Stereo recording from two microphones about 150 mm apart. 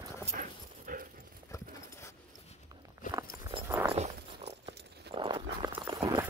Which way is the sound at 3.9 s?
40° right (ahead or behind).